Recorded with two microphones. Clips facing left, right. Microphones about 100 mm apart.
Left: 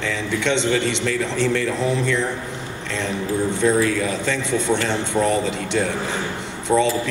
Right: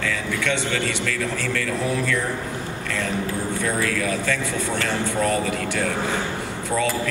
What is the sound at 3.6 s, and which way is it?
A man's voice, 20° left (ahead or behind).